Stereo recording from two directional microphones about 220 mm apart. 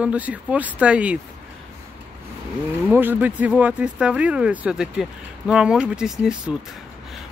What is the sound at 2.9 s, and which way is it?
Speech, 10° right (ahead or behind).